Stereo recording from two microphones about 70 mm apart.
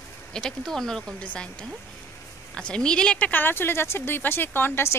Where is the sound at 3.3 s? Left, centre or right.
Left.